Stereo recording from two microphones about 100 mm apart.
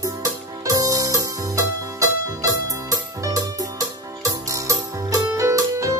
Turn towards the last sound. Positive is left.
turn(degrees=-35)  # may be behind; listen again after turning